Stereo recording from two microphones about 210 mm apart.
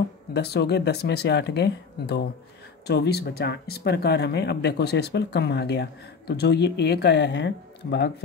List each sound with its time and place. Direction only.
0.3 s speech: 50° left (ahead or behind)